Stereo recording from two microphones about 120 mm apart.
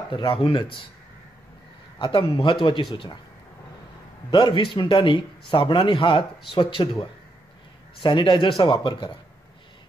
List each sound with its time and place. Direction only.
0.3 s speech: 45° left (ahead or behind)
2.0 s speech: 45° left (ahead or behind)
4.3 s speech: 40° left (ahead or behind)